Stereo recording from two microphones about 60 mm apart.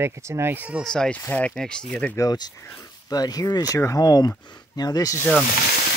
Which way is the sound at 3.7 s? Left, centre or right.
Left.